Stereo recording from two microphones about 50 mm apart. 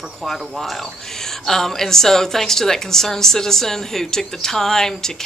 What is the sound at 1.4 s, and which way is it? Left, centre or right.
Speech, centre.